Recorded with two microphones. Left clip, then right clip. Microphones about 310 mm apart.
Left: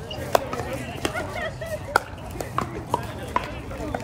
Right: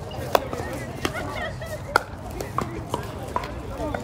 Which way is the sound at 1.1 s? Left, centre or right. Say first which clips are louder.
Left 1 dB; left.